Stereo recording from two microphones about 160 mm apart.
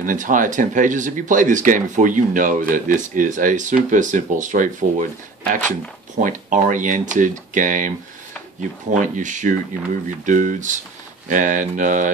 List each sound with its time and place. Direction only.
0.0 s speech: 55° right (ahead or behind)
8.9 s speech: 50° right (ahead or behind)